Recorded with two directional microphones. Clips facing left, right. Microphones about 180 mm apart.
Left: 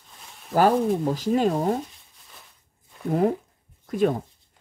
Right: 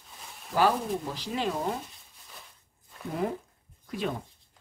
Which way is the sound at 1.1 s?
45° left (ahead or behind).